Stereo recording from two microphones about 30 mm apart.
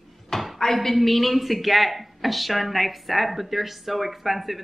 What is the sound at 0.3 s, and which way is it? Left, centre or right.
Dishes, centre.